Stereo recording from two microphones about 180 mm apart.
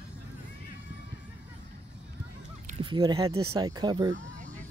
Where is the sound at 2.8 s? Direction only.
25° right (ahead or behind).